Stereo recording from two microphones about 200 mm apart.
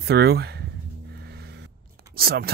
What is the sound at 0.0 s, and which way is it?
Speech, 55° right (ahead or behind).